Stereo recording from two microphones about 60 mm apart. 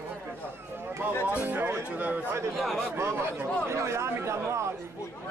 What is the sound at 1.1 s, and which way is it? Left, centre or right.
Music, left.